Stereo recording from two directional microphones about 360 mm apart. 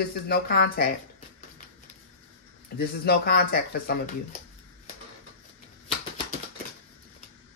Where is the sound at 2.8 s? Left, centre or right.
Left.